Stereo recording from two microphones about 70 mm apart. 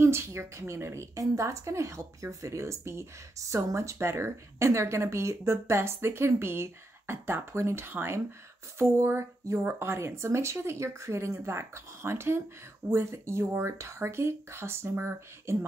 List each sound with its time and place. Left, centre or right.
0.0 s speech: right